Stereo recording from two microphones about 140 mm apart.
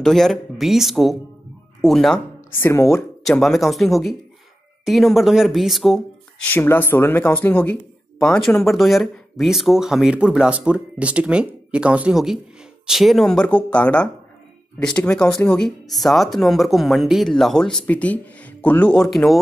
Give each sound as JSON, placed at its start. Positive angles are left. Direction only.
{"t": 0.0, "sound": "speech", "side_deg": 5}
{"t": 2.6, "sound": "speech", "side_deg": 20}
{"t": 3.3, "sound": "speech", "side_deg": 0}
{"t": 6.4, "sound": "speech", "side_deg": 15}